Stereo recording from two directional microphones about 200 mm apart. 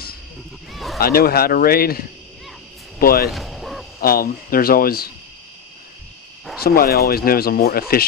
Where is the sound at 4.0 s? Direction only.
50° left (ahead or behind).